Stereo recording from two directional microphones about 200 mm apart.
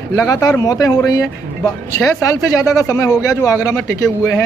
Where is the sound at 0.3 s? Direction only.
20° left (ahead or behind).